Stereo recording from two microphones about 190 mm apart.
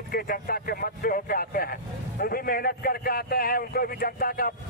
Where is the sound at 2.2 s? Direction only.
50° left (ahead or behind).